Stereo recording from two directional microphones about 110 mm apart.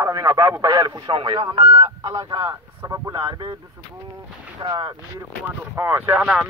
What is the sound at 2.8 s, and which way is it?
Speech, 30° right (ahead or behind).